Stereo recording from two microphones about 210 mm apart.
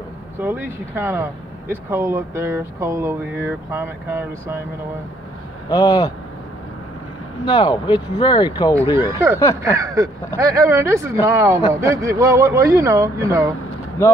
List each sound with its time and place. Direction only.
0.4 s speech: 10° right (ahead or behind)
5.7 s speech: 20° left (ahead or behind)
7.4 s speech: 20° left (ahead or behind)
8.9 s speech: 10° right (ahead or behind)